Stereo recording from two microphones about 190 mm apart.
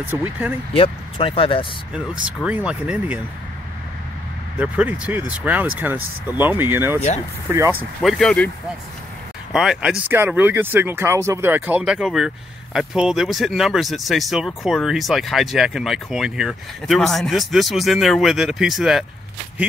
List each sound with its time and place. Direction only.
0.2 s speech: 10° right (ahead or behind)
0.7 s speech: 30° left (ahead or behind)
2.2 s speech: 5° right (ahead or behind)
4.6 s speech: 5° right (ahead or behind)
8.0 s speech: centre (ahead or behind)
9.5 s speech: 5° right (ahead or behind)